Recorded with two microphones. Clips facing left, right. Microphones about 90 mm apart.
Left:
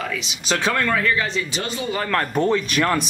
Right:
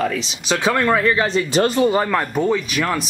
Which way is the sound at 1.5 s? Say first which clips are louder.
Right 11 dB; 45° right (ahead or behind).